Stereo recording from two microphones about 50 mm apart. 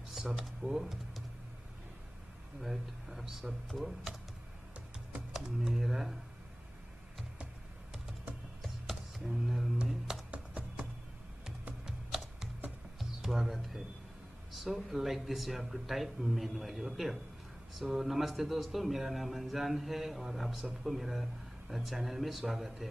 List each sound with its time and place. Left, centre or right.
0.4 s speech: centre
2.6 s speech: centre
5.3 s speech: centre
8.6 s a sound: centre
10.3 s music: right
13.2 s speech: centre
14.5 s a sound: centre
14.9 s speech: centre